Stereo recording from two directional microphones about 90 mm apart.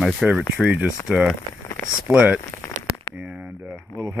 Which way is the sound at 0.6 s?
15° right (ahead or behind).